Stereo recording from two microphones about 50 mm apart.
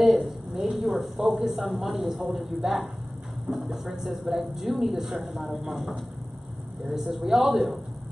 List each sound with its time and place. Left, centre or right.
0.0 s speech: centre